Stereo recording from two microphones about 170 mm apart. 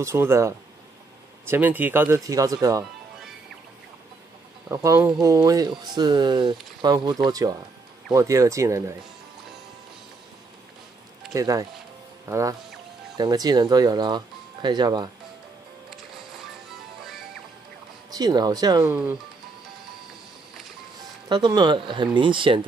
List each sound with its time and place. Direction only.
0.0 s speech: 15° right (ahead or behind)
4.6 s speech: 15° right (ahead or behind)
11.3 s speech: 20° right (ahead or behind)
15.9 s music: centre (ahead or behind)
18.1 s speech: 25° right (ahead or behind)
21.3 s speech: 25° right (ahead or behind)